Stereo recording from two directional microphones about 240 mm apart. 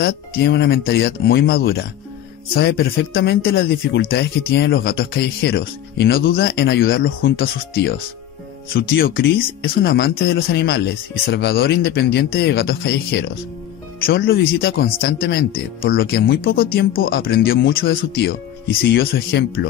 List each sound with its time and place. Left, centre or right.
0.0 s speech: left
8.7 s speech: left